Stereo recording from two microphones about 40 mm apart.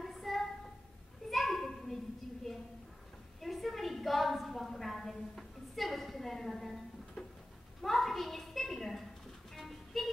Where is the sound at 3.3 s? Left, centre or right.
Centre.